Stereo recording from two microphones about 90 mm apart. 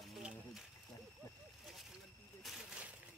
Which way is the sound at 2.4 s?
5° right (ahead or behind).